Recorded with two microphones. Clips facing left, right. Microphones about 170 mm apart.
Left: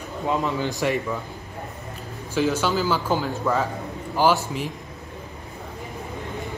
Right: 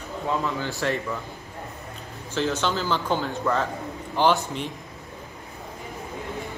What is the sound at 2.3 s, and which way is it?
Speech, 10° left (ahead or behind).